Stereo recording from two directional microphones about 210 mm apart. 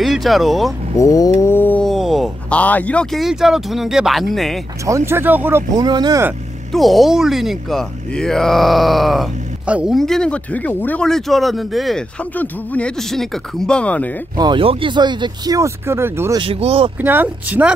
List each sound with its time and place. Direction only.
0.0 s speech: centre (ahead or behind)
0.9 s speech: 15° left (ahead or behind)
4.8 s speech: 15° right (ahead or behind)
6.7 s speech: centre (ahead or behind)
14.3 s speech: 20° right (ahead or behind)
16.3 s speech: 25° right (ahead or behind)
17.0 s speech: 10° right (ahead or behind)